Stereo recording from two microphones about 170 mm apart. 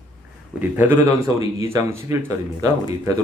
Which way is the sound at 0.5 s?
10° right (ahead or behind).